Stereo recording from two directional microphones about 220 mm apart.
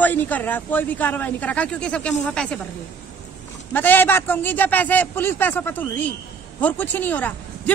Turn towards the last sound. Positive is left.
turn(degrees=10)  # may be behind; listen again after turning